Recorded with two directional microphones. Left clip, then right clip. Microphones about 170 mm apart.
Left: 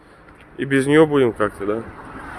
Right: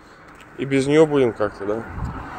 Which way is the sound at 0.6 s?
20° left (ahead or behind).